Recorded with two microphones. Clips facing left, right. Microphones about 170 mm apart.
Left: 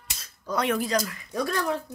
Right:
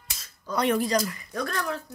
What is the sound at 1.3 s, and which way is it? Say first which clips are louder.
Speech: left 5 dB; 10° left (ahead or behind).